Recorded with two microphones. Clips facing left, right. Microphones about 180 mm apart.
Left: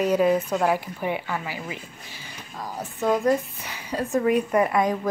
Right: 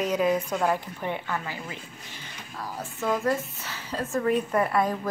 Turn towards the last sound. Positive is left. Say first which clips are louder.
# left 3 dB
turn(degrees=15)  # may be behind; listen again after turning